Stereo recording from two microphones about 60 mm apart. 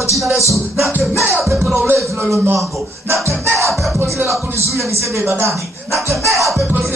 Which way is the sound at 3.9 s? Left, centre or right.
Right.